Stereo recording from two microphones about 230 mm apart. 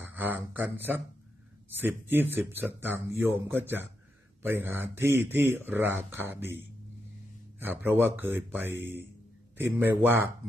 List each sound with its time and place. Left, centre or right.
0.0 s speech: centre
7.5 s speech: centre